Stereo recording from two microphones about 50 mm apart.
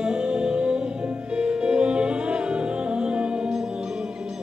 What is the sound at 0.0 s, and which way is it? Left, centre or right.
Music, centre.